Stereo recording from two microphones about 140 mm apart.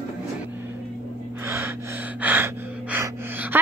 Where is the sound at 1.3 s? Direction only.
15° right (ahead or behind).